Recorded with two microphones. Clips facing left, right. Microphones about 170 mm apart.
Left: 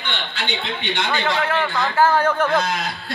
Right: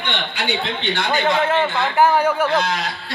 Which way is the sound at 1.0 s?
30° right (ahead or behind).